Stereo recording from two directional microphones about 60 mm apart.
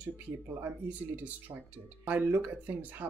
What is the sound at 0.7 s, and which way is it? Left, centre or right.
Speech, right.